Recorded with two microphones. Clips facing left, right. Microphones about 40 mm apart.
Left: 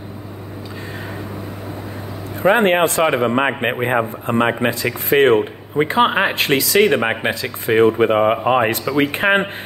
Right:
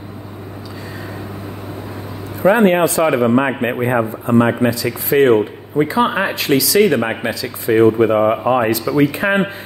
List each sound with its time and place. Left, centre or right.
2.5 s speech: left
3.0 s speech: left